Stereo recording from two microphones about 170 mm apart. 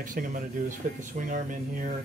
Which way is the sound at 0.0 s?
50° right (ahead or behind).